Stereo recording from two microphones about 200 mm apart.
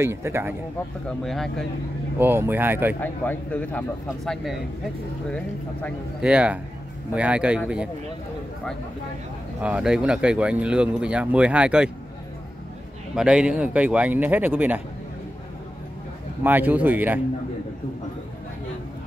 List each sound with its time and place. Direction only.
0.0 s speech: 15° right (ahead or behind)
1.0 s speech: centre (ahead or behind)
2.1 s speech: 10° right (ahead or behind)
3.0 s speech: 10° left (ahead or behind)
6.2 s speech: 5° right (ahead or behind)
9.6 s speech: 5° right (ahead or behind)
13.1 s speech: 5° right (ahead or behind)
16.4 s speech: 10° right (ahead or behind)